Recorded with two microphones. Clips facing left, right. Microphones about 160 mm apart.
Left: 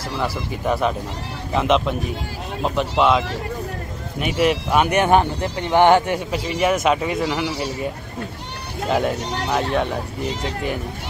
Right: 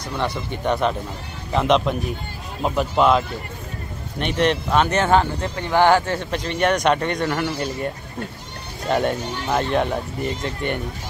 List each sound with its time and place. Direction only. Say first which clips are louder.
0.2 s speech: even; 5° left (ahead or behind)
8.8 s speech: even; centre (ahead or behind)
9.2 s speech: left 2 dB; 75° left (ahead or behind)
9.5 s speech: right 1 dB; centre (ahead or behind)